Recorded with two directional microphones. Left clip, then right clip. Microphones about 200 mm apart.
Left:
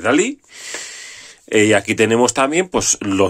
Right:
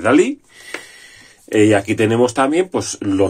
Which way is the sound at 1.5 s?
35° left (ahead or behind).